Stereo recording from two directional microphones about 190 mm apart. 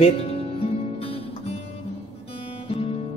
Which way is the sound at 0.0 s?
30° left (ahead or behind).